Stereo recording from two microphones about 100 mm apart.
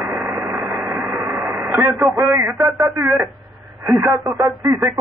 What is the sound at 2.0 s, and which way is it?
Speech, 30° right (ahead or behind).